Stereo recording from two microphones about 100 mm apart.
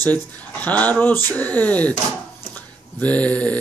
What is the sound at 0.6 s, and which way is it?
Speech, 15° left (ahead or behind).